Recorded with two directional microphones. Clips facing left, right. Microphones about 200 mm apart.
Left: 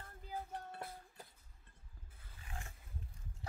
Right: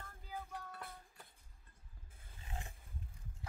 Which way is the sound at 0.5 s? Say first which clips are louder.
Left 2 dB; 25° left (ahead or behind).